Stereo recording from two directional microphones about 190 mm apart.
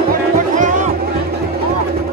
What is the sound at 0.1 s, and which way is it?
Music, 40° right (ahead or behind).